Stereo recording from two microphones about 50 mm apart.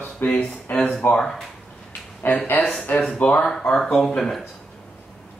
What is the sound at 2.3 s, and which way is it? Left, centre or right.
Speech, left.